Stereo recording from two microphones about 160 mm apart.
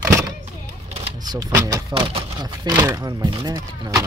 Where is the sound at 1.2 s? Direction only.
25° right (ahead or behind).